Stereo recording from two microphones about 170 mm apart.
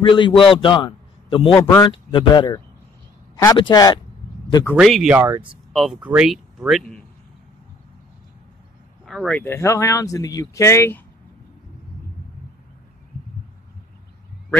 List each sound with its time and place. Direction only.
0.0 s a man's voice: 30° left (ahead or behind)
1.5 s speech: 15° left (ahead or behind)
4.7 s speech: centre (ahead or behind)
5.7 s speech: centre (ahead or behind)
9.0 s speech: centre (ahead or behind)
9.4 s speech: 15° left (ahead or behind)